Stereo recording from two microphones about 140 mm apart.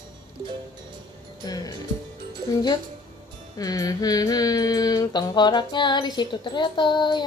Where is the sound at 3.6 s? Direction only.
25° left (ahead or behind).